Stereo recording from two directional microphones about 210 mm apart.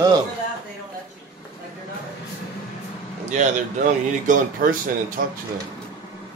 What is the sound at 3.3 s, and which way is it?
Speech, 40° right (ahead or behind).